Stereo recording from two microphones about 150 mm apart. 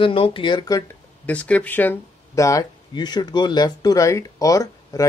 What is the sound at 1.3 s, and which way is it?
Speech, 10° left (ahead or behind).